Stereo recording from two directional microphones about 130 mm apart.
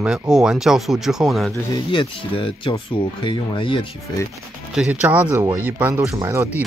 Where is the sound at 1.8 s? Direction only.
40° left (ahead or behind).